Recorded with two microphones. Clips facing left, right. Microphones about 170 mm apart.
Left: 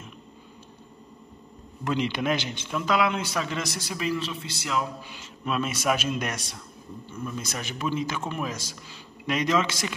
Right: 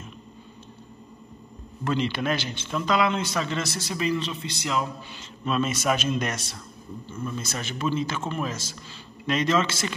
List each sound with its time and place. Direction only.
1.9 s a man's voice: 15° left (ahead or behind)